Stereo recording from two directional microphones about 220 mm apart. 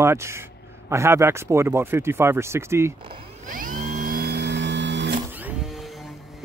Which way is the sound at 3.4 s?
35° right (ahead or behind).